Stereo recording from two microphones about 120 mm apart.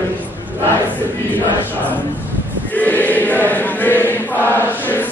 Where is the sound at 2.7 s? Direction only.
15° left (ahead or behind).